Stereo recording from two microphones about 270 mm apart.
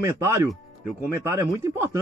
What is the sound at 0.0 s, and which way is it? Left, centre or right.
Speech, centre.